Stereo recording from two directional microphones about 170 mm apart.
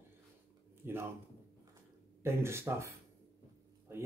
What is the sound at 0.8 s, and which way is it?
Speech, 15° right (ahead or behind).